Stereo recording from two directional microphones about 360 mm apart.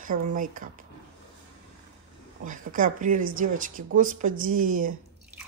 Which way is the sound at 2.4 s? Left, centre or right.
Right.